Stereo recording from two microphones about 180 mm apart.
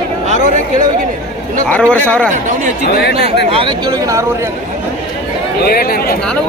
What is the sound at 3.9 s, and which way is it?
Speech, 15° right (ahead or behind).